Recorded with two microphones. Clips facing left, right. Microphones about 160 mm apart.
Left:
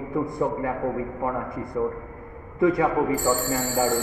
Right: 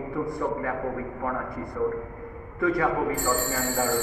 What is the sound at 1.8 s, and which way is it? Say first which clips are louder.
A man's voice: even; 20° left (ahead or behind).